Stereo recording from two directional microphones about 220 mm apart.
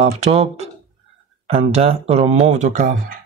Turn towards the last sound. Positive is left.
turn(degrees=-35)  # may be behind; listen again after turning